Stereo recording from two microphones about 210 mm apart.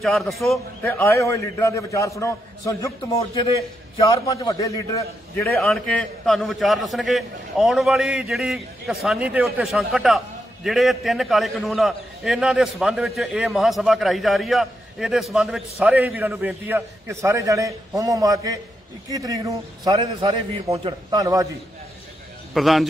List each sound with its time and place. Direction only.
0.0 s a man's voice: centre (ahead or behind); by 21.5 s 15° right (ahead or behind)
22.5 s a man's voice: centre (ahead or behind)